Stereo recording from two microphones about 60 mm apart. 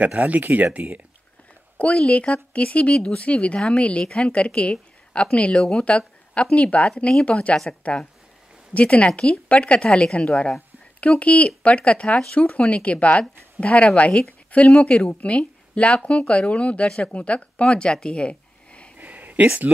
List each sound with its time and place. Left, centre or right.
0.2 s speech: right
1.8 s a woman's voice: centre
18.9 s a sound: right